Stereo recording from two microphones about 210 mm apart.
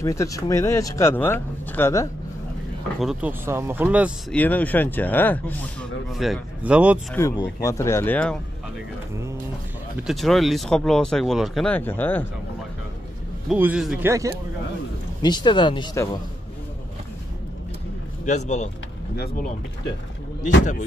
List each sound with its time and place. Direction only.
0.0 s speech: 15° left (ahead or behind)
3.0 s speech: 5° right (ahead or behind)
4.3 s speech: 10° left (ahead or behind)
7.2 s speech: 15° left (ahead or behind)
9.9 s speech: centre (ahead or behind)
13.5 s speech: 5° right (ahead or behind)
15.2 s speech: 20° left (ahead or behind)
18.2 s speech: 35° left (ahead or behind)
19.1 s speech: 50° left (ahead or behind)